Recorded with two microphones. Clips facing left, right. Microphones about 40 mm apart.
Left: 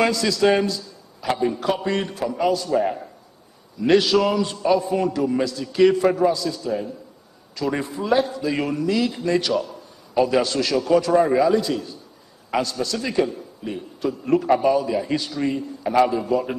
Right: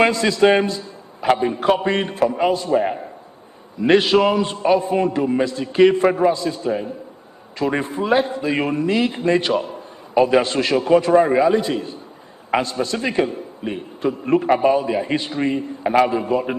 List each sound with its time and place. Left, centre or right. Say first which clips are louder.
0.0 s a man's voice: right 4 dB; right